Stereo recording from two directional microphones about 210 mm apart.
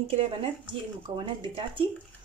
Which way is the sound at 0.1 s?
25° right (ahead or behind).